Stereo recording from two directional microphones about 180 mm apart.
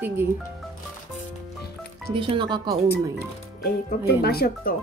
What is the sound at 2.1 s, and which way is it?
Speech, 30° right (ahead or behind).